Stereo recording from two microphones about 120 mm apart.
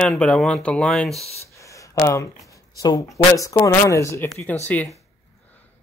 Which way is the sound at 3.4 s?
25° left (ahead or behind).